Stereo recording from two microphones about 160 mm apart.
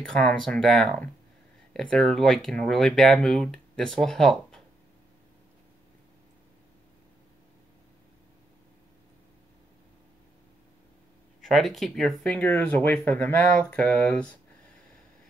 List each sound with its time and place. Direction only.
0.1 s speech: 5° left (ahead or behind)
11.4 s speech: centre (ahead or behind)